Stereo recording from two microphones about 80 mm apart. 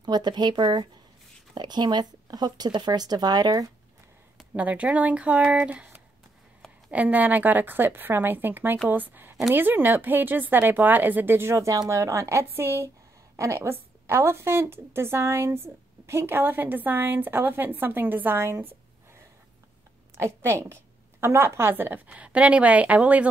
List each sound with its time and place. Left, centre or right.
0.0 s speech: right
4.6 s a woman's voice: centre
20.2 s a woman's voice: right
22.1 s speech: centre